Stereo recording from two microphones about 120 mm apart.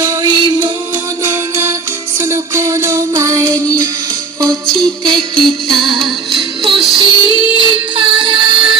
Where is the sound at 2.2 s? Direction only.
25° right (ahead or behind).